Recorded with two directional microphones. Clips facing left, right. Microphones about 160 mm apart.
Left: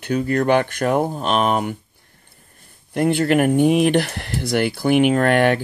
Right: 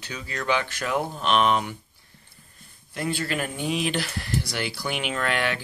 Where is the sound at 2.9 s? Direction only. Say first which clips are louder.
Left 11 dB; 60° left (ahead or behind).